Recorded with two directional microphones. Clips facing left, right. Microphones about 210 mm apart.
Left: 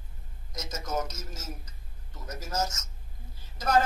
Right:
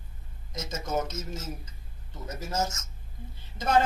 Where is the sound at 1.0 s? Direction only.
25° right (ahead or behind).